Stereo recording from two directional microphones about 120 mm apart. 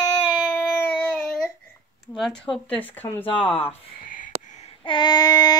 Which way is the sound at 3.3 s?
50° left (ahead or behind).